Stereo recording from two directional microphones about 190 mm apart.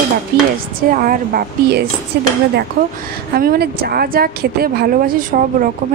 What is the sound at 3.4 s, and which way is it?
A woman's voice, 55° right (ahead or behind).